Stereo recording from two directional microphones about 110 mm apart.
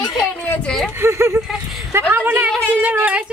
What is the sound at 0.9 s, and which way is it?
A woman's voice, 25° right (ahead or behind).